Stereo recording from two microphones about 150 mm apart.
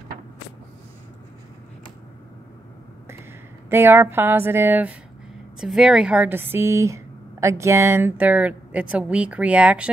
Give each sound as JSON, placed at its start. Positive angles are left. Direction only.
{"t": 3.7, "sound": "speech", "side_deg": -15}